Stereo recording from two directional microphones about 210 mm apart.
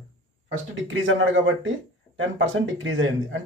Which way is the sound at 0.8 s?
65° right (ahead or behind).